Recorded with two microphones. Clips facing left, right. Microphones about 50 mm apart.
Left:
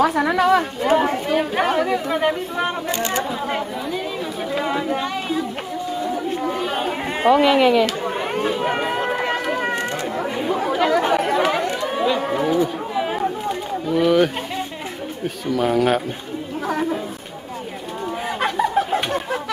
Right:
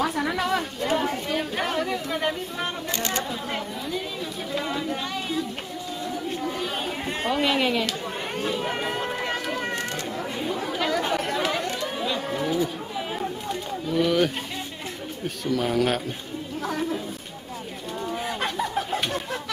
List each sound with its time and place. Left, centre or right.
0.0 s speech: left
2.9 s speech: left
3.4 s speech: centre
6.0 s chatter: centre
8.0 s run: centre
9.8 s chatter: left
13.5 s a sound: centre
15.4 s speech: centre
18.4 s bird: centre